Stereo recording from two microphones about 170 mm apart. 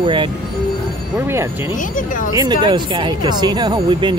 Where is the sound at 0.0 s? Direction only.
30° right (ahead or behind).